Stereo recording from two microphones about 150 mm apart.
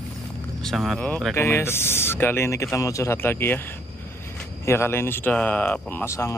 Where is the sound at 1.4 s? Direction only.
15° left (ahead or behind).